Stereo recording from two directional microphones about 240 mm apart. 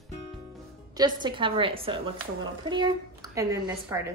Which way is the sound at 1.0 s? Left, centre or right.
Centre.